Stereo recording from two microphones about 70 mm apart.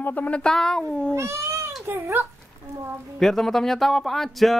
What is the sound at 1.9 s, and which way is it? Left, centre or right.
Speech, right.